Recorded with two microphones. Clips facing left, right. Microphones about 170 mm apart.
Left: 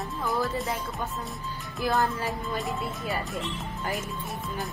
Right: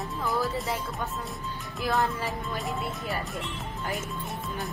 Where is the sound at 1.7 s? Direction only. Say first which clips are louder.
Left 1 dB; centre (ahead or behind).